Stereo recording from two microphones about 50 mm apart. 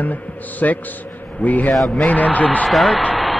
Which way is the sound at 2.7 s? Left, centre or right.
Centre.